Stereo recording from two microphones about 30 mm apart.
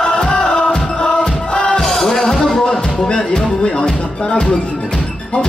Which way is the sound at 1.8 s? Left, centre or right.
Centre.